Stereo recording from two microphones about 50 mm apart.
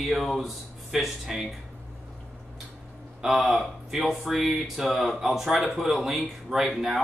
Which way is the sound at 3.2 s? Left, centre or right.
Centre.